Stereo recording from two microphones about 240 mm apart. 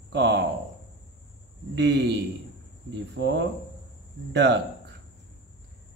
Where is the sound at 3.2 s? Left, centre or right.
Right.